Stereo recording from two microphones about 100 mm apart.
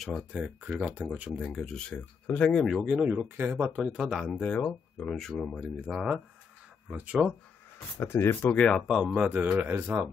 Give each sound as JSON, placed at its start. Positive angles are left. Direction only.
{"t": 0.3, "sound": "speech", "side_deg": -15}
{"t": 1.4, "sound": "speech", "side_deg": 5}
{"t": 2.8, "sound": "speech", "side_deg": -10}
{"t": 4.4, "sound": "speech", "side_deg": 10}
{"t": 8.0, "sound": "speech", "side_deg": 25}
{"t": 8.8, "sound": "speech", "side_deg": -5}